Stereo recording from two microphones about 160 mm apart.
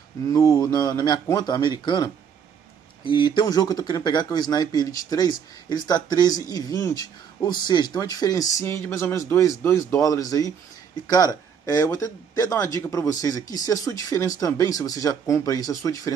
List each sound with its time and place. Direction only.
0.3 s speech: 20° left (ahead or behind)